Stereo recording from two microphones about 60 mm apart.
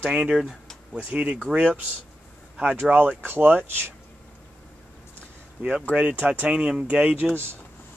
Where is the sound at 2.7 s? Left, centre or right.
Right.